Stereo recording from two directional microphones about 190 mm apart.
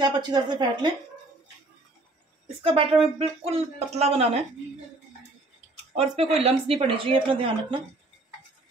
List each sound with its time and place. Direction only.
0.0 s speech: 20° right (ahead or behind)
2.6 s speech: 30° right (ahead or behind)
5.9 s speech: 35° right (ahead or behind)